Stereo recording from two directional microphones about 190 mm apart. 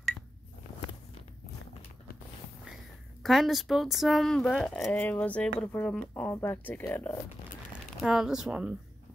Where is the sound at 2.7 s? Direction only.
Centre (ahead or behind).